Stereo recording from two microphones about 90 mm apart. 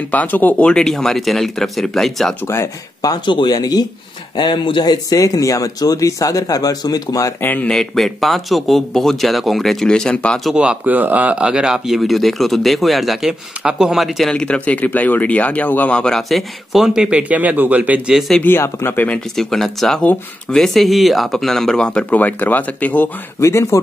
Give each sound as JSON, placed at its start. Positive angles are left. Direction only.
{"t": 0.1, "sound": "speech", "side_deg": 20}
{"t": 2.4, "sound": "speech", "side_deg": 25}
{"t": 3.0, "sound": "speech", "side_deg": 45}
{"t": 7.4, "sound": "speech", "side_deg": 20}
{"t": 7.7, "sound": "speech", "side_deg": 5}
{"t": 10.4, "sound": "speech", "side_deg": -10}
{"t": 18.4, "sound": "speech", "side_deg": 25}
{"t": 19.1, "sound": "speech", "side_deg": 5}
{"t": 23.4, "sound": "speech", "side_deg": 30}